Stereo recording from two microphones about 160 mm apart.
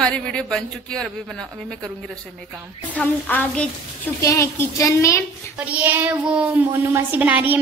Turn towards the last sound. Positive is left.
turn(degrees=-10)  # may be behind; listen again after turning